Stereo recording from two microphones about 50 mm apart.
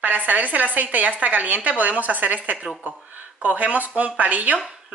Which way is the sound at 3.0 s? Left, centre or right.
Right.